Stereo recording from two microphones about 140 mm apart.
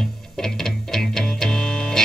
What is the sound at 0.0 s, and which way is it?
Music, 5° left (ahead or behind).